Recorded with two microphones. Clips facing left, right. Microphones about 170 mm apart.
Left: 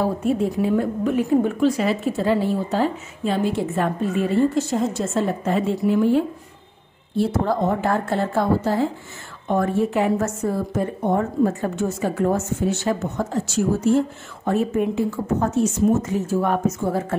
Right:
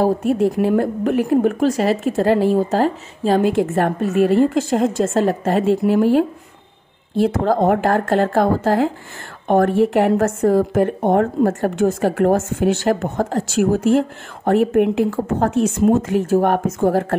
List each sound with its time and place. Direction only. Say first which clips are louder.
0.2 s a woman's voice: right 4 dB; 70° right (ahead or behind)
1.6 s a woman's voice: right 2 dB; 40° right (ahead or behind)
3.7 s a woman's voice: right 5 dB; 75° right (ahead or behind)
7.5 s a woman's voice: right 5 dB; 60° right (ahead or behind); by 8.9 s 90° right
9.5 s a woman's voice: right 6 dB; 75° right (ahead or behind)
12.1 s a woman's voice: right 5 dB; 75° right (ahead or behind)
12.9 s speech: right 4 dB; 50° right (ahead or behind)
13.3 s speech: right 4 dB; 80° right
14.7 s speech: right 5 dB; 65° right (ahead or behind)
15.4 s a woman's voice: right 4 dB; 90° right
16.4 s speech: right 4 dB; 75° right (ahead or behind)